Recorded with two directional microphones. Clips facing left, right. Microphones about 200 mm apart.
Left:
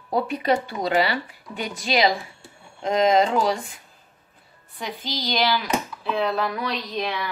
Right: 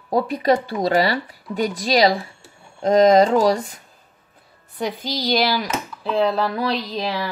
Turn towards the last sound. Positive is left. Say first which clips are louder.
# right 3 dB
turn(degrees=-30)  # may be behind; listen again after turning